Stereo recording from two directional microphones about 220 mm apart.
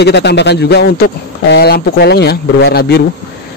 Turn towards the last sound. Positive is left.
turn(degrees=50)  # may be behind; listen again after turning